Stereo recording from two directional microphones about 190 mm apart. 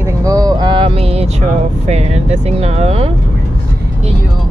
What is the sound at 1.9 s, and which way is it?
Speech, 35° right (ahead or behind).